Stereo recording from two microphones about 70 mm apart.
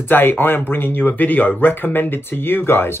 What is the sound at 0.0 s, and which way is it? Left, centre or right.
Speech, left.